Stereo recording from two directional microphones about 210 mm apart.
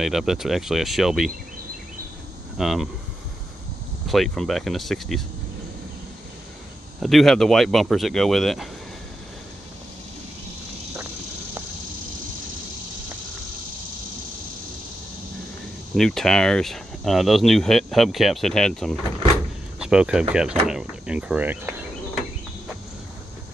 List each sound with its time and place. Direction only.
0.0 s speech: centre (ahead or behind)
2.5 s speech: centre (ahead or behind)
4.1 s speech: centre (ahead or behind)
7.0 s speech: centre (ahead or behind)
15.9 s speech: centre (ahead or behind)